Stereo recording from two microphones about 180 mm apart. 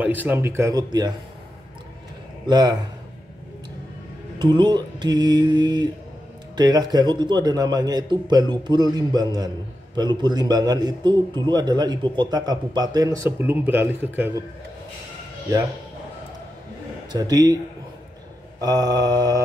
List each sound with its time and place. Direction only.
0.0 s speech: 10° right (ahead or behind)
2.4 s a man's voice: 20° right (ahead or behind)
4.4 s a man's voice: 25° right (ahead or behind)
17.1 s a man's voice: 20° right (ahead or behind)
18.6 s a man's voice: 20° right (ahead or behind)